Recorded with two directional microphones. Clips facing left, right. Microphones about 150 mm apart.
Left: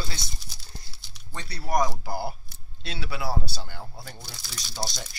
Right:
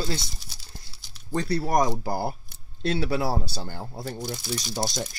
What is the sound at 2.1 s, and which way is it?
Speech, 45° right (ahead or behind).